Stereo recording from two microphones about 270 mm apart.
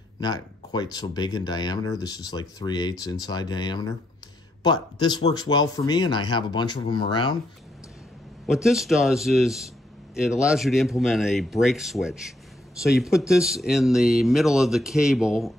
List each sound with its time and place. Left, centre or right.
0.2 s speech: centre
8.5 s speech: centre